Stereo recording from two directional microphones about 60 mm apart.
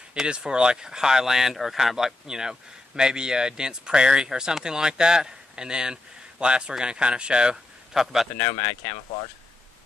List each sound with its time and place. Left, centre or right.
0.1 s speech: centre
8.0 s a man's voice: centre
8.4 s speech: left